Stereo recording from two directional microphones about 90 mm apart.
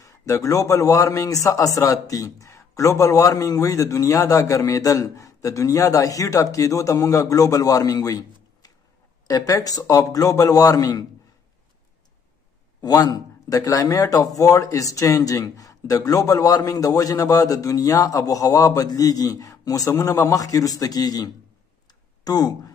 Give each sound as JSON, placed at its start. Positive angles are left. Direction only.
{"t": 0.0, "sound": "a man's voice", "side_deg": 35}
{"t": 12.8, "sound": "a man's voice", "side_deg": 40}